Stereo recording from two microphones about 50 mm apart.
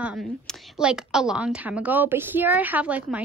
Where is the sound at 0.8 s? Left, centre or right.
Centre.